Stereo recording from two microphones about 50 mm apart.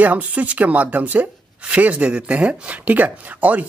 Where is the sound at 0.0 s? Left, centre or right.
Right.